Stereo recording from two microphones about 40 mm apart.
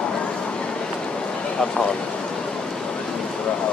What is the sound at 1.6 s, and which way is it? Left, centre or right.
Speech, centre.